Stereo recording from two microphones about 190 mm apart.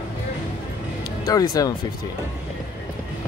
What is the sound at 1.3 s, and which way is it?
Speech, 20° left (ahead or behind).